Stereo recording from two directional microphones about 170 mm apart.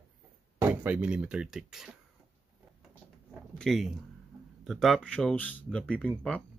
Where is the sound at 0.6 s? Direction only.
10° right (ahead or behind).